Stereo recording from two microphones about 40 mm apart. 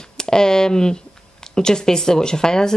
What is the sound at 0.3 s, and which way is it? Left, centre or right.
A woman's voice, centre.